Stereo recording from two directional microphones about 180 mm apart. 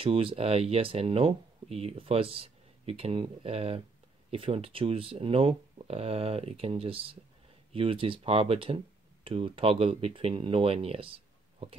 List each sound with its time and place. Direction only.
0.0 s speech: 30° right (ahead or behind)